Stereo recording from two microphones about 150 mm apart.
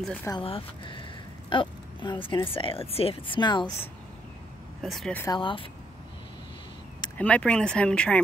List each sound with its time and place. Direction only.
0.0 s speech: 10° left (ahead or behind)
0.4 s speech: 35° left (ahead or behind)
4.8 s speech: centre (ahead or behind)
5.3 s speech: 35° left (ahead or behind)
7.2 s speech: 10° left (ahead or behind)